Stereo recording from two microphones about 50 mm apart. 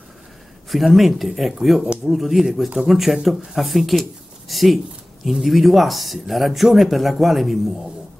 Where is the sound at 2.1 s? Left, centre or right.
Centre.